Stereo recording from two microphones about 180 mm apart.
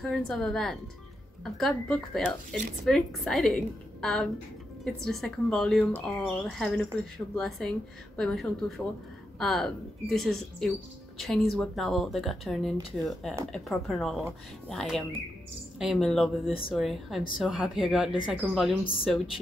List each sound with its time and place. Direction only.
0.0 s a woman's voice: centre (ahead or behind)
16.4 s speech: 30° left (ahead or behind)
16.7 s a woman's voice: centre (ahead or behind)